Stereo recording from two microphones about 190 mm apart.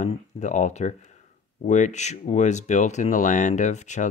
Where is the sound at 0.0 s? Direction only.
40° left (ahead or behind).